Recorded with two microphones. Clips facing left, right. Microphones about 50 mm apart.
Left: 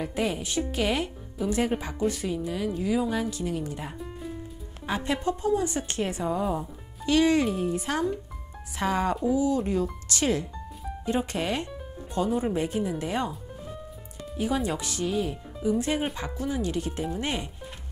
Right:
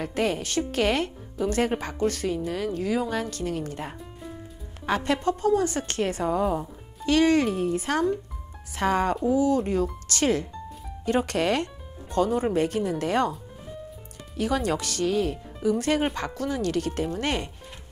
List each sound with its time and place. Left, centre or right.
0.0 s a woman's voice: right
14.3 s a woman's voice: right